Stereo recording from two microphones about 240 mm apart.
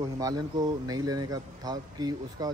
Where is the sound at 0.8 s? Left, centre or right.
Centre.